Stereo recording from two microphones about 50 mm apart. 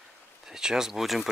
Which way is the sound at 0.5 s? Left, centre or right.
Centre.